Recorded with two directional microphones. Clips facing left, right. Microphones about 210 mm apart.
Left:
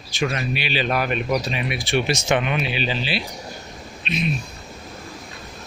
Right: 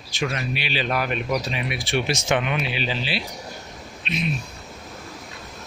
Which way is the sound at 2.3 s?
5° left (ahead or behind).